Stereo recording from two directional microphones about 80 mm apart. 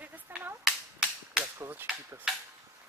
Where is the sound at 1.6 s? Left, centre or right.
Right.